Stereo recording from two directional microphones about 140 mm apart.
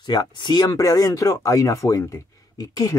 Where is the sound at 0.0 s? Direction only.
30° left (ahead or behind).